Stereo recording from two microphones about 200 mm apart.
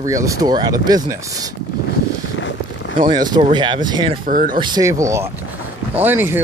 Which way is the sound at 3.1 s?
20° right (ahead or behind).